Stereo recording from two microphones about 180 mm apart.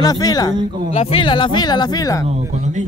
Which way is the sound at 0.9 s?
30° left (ahead or behind).